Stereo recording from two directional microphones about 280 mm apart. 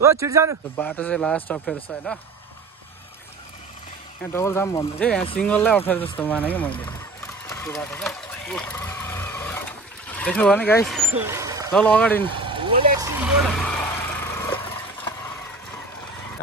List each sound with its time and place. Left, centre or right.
0.0 s speech: centre
0.7 s speech: centre
4.2 s speech: centre
7.4 s vehicle: centre
11.7 s speech: centre
12.4 s vehicle: centre
13.5 s vehicle: centre